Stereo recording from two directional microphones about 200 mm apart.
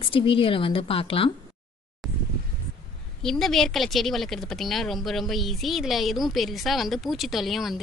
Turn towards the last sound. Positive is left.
turn(degrees=0)  # may be behind; listen again after turning